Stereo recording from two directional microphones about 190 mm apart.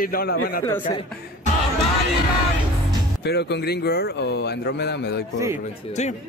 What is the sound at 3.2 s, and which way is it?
Speech, 60° left (ahead or behind).